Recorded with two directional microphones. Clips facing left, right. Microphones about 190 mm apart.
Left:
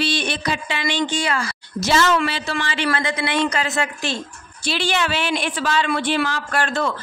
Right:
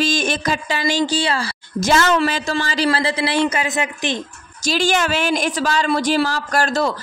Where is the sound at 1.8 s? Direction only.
50° right (ahead or behind); by 4.2 s 20° right (ahead or behind).